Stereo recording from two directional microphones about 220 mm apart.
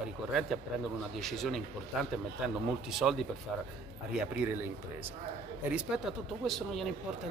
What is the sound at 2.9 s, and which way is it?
Speech, centre (ahead or behind).